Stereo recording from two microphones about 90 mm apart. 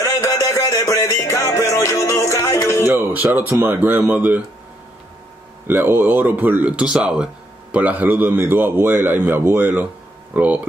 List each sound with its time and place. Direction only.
0.0 s a sound: 35° left (ahead or behind)
1.1 s music: 30° left (ahead or behind)
2.8 s a man's voice: 25° right (ahead or behind)
5.7 s a man's voice: 25° right (ahead or behind)